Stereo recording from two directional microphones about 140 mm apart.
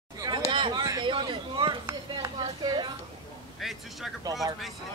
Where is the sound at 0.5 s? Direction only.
35° right (ahead or behind).